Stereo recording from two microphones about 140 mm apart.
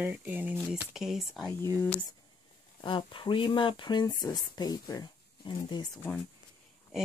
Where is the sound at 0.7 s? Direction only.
5° right (ahead or behind).